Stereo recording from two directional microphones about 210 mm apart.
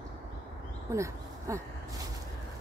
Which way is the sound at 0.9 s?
15° right (ahead or behind).